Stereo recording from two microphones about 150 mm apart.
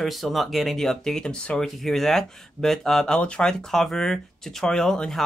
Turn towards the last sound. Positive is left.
turn(degrees=5)  # may be behind; listen again after turning